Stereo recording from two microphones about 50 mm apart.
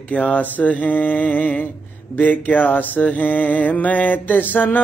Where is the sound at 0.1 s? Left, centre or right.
Left.